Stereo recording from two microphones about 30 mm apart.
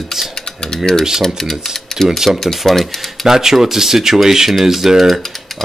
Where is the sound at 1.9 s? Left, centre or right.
Centre.